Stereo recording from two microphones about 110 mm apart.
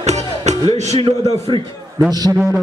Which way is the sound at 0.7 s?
90° right.